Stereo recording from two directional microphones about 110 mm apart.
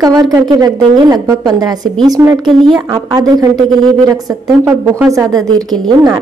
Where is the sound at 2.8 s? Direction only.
35° right (ahead or behind).